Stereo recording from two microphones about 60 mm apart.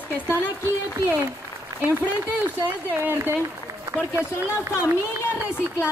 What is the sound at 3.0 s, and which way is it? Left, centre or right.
Speech, right.